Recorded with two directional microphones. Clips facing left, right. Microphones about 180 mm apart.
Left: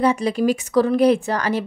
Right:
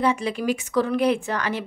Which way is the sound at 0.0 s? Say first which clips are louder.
Left 5 dB; 40° left (ahead or behind).